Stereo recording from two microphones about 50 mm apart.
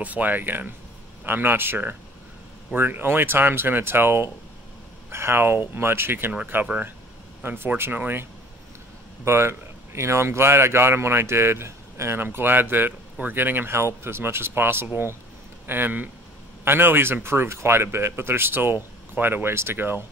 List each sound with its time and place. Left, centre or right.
0.0 s speech: right
6.3 s speech: right
7.4 s speech: right
9.2 s speech: right
12.3 s speech: right
13.7 s speech: right